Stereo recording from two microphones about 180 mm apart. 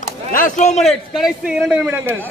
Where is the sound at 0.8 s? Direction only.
Centre (ahead or behind).